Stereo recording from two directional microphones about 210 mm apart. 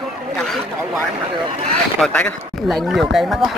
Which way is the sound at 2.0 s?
5° left (ahead or behind).